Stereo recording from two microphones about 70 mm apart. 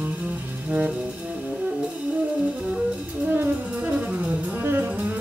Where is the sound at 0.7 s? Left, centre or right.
Centre.